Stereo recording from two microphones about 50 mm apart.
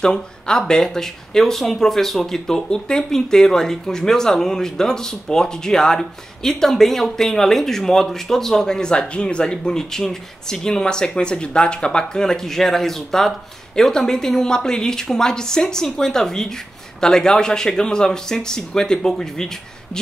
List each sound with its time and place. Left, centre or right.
0.0 s speech: centre